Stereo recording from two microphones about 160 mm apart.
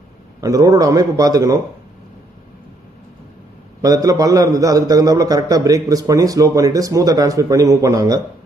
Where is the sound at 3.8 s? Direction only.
20° right (ahead or behind).